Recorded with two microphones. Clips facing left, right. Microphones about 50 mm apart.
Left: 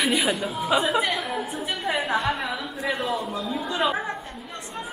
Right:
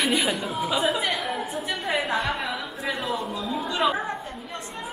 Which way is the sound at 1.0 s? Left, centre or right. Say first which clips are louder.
Left 1 dB; centre.